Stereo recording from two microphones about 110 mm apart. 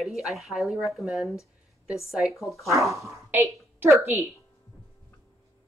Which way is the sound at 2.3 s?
25° left (ahead or behind).